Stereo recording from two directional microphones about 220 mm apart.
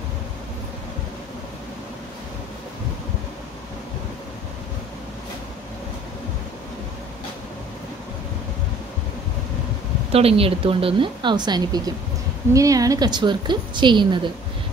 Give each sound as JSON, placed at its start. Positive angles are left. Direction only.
{"t": 10.1, "sound": "a woman's voice", "side_deg": -25}